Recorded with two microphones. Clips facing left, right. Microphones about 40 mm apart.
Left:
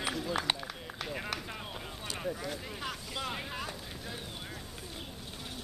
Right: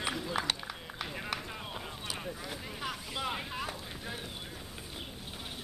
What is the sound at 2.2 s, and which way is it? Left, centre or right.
Speech, centre.